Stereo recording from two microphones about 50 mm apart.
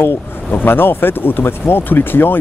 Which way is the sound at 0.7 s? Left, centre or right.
Left.